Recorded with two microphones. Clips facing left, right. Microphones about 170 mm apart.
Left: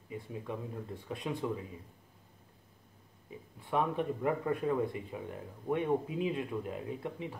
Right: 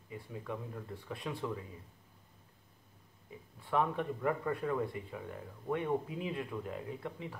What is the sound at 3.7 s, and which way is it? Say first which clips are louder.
Speech: left 1 dB; 20° left (ahead or behind).